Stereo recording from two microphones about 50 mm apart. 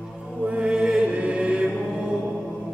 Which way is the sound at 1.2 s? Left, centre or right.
Right.